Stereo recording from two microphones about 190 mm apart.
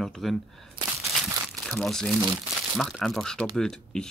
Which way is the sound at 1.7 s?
5° left (ahead or behind).